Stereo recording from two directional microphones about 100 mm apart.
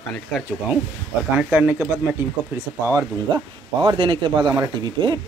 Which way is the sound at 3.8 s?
60° right (ahead or behind).